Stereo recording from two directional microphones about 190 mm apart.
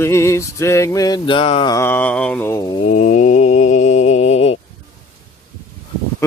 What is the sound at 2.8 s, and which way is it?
Mantra, 40° left (ahead or behind).